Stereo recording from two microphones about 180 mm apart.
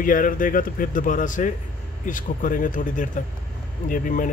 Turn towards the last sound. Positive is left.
turn(degrees=45)  # may be behind; listen again after turning